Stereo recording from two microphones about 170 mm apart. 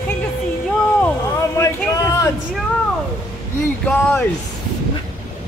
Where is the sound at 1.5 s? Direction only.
20° left (ahead or behind).